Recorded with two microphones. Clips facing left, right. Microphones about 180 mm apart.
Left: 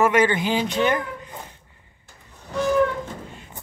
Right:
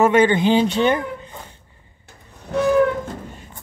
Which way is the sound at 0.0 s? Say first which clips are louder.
Right 4 dB; 25° right (ahead or behind).